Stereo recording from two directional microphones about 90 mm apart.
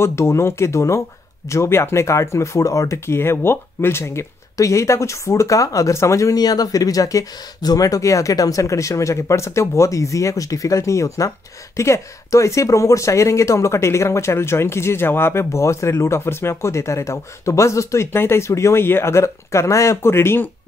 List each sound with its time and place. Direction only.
0.0 s speech: 30° left (ahead or behind)